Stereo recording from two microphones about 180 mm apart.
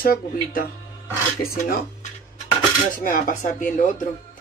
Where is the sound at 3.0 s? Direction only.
50° left (ahead or behind).